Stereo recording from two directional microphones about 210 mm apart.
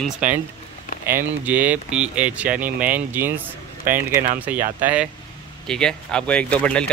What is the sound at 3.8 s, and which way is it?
Speech, 40° right (ahead or behind).